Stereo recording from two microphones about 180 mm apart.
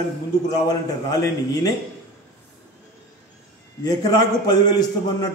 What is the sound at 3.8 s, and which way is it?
A man's voice, 20° left (ahead or behind).